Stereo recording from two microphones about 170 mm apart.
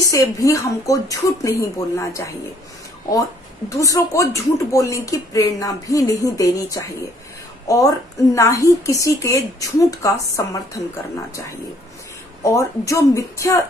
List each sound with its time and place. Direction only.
0.1 s speech: 20° left (ahead or behind)
3.6 s speech: 20° left (ahead or behind)
12.4 s speech: 20° left (ahead or behind)